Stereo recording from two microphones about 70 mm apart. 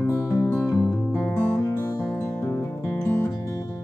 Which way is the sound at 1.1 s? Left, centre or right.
Left.